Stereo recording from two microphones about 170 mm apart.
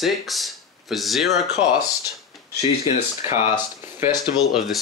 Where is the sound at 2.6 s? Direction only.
40° left (ahead or behind).